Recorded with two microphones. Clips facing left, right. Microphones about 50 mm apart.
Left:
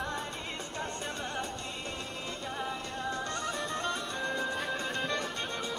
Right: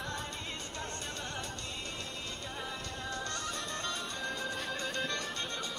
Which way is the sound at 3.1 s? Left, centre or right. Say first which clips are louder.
Left 3 dB; centre.